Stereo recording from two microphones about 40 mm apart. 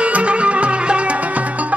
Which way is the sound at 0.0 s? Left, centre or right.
Right.